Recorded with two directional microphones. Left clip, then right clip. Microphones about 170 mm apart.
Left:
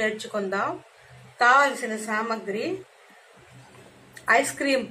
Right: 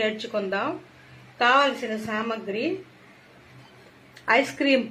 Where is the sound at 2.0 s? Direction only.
30° right (ahead or behind).